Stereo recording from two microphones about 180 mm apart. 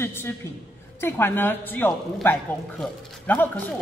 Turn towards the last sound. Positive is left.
turn(degrees=10)  # may be behind; listen again after turning